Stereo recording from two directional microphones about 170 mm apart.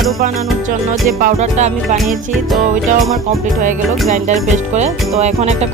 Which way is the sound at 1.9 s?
Centre (ahead or behind).